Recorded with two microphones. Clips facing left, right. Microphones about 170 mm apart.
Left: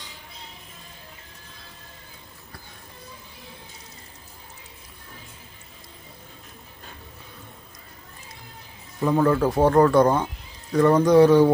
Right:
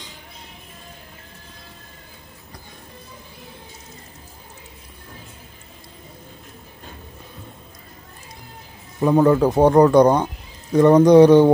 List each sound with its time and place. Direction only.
9.0 s speech: 20° right (ahead or behind)